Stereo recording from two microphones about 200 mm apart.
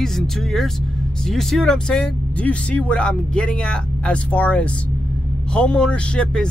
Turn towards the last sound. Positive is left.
turn(degrees=5)  # may be behind; listen again after turning